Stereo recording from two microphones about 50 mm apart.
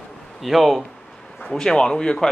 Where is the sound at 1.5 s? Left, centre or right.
Centre.